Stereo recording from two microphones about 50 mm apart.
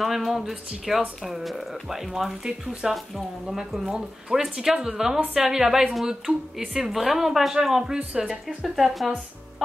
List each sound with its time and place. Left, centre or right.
0.0 s a woman's voice: centre
8.6 s speech: centre